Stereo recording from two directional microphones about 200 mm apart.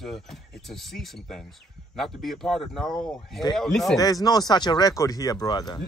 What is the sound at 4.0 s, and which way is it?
Speech, 20° left (ahead or behind).